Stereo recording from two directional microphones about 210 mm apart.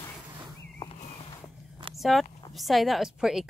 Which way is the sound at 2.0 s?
Centre (ahead or behind).